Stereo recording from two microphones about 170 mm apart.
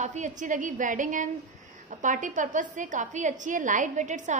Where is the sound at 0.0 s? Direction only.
45° right (ahead or behind).